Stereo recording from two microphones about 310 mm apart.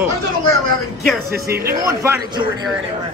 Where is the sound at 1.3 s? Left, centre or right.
Right.